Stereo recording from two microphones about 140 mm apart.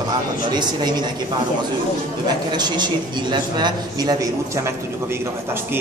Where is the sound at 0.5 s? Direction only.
30° right (ahead or behind).